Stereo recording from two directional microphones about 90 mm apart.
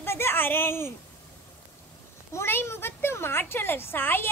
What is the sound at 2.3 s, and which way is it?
Speech, 30° left (ahead or behind).